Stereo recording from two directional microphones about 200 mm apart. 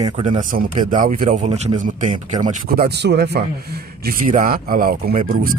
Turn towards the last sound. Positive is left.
turn(degrees=-45)  # may be behind; listen again after turning